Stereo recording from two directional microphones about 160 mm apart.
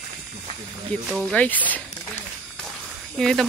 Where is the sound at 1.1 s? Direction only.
5° left (ahead or behind).